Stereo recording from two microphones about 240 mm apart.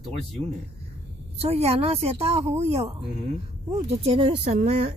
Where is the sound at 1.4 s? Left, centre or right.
Right.